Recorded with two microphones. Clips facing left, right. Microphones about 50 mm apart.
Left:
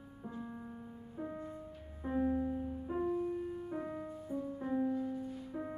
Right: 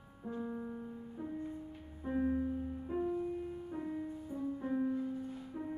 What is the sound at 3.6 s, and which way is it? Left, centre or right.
Music, left.